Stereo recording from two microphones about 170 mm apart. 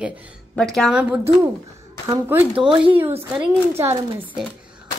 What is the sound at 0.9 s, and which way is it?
Speech, 10° right (ahead or behind).